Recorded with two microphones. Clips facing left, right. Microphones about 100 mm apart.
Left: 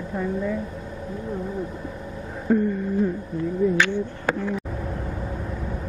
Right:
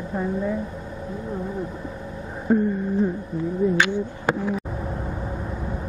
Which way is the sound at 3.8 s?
15° right (ahead or behind).